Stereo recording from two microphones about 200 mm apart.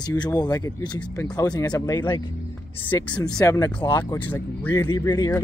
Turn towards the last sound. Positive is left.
turn(degrees=15)  # may be behind; listen again after turning